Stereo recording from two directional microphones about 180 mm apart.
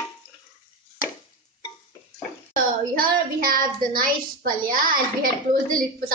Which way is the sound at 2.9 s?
55° right (ahead or behind).